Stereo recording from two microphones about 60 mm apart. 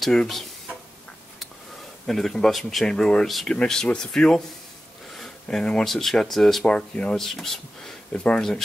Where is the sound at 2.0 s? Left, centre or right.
Centre.